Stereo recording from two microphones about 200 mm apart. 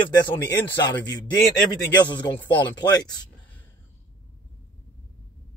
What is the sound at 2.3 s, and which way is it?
Speech, 20° left (ahead or behind).